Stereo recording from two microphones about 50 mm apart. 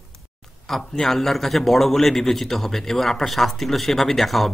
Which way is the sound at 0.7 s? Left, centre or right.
Centre.